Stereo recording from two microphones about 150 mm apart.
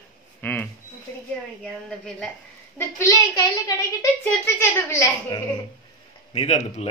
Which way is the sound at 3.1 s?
25° left (ahead or behind).